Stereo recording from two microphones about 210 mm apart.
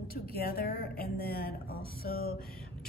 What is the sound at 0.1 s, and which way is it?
A woman's voice, 45° left (ahead or behind).